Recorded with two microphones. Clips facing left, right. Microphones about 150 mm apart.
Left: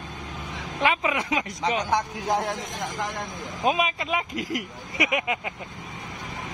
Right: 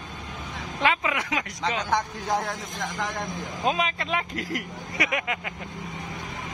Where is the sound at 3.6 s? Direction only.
15° left (ahead or behind).